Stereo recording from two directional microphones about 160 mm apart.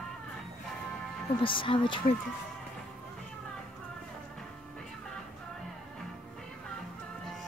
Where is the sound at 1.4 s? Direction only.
30° left (ahead or behind).